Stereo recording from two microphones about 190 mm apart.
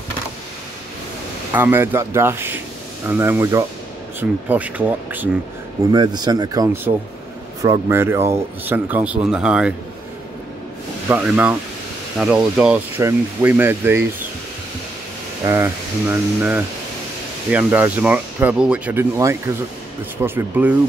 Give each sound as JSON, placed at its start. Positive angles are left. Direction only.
{"t": 1.5, "sound": "speech", "side_deg": -10}
{"t": 5.9, "sound": "speech", "side_deg": -20}
{"t": 11.1, "sound": "speech", "side_deg": -10}
{"t": 15.4, "sound": "speech", "side_deg": -15}